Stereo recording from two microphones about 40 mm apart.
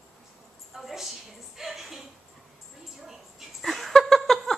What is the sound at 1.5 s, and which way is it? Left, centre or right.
Speech, centre.